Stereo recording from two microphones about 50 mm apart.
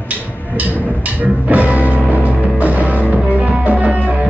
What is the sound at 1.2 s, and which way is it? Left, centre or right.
Music, right.